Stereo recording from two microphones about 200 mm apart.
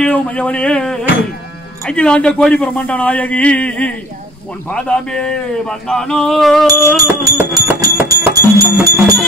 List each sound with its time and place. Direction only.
0.0 s a man's voice: 5° left (ahead or behind)
7.0 s music: 15° right (ahead or behind)